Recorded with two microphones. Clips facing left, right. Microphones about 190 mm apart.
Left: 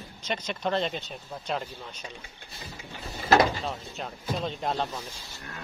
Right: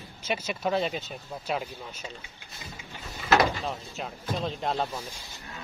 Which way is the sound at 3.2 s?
30° left (ahead or behind).